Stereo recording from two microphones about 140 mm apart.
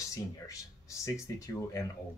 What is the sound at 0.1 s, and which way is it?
Speech, 20° left (ahead or behind).